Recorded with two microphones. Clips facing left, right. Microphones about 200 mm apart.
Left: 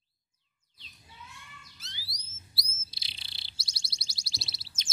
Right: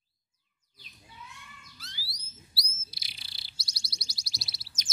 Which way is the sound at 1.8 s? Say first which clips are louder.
Right 2 dB; 20° left (ahead or behind).